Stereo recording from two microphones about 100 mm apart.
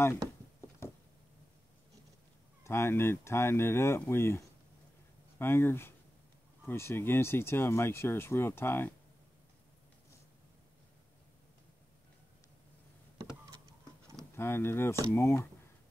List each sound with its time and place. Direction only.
0.6 s a sound: 30° left (ahead or behind)
2.6 s speech: 25° left (ahead or behind)
14.3 s speech: 25° left (ahead or behind)